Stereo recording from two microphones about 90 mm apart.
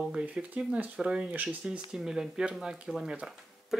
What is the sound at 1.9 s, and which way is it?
Speech, 5° right (ahead or behind).